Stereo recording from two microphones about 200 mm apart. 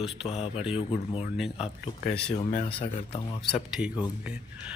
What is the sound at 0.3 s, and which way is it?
Speech, 30° left (ahead or behind).